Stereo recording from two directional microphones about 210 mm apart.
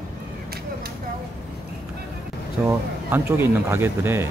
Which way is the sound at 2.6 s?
10° right (ahead or behind).